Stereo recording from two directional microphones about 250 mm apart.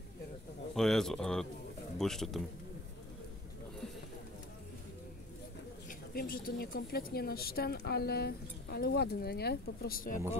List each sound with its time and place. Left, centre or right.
0.7 s speech: centre
5.9 s a woman's voice: left